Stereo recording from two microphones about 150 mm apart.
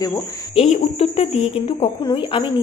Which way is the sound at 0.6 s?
45° left (ahead or behind).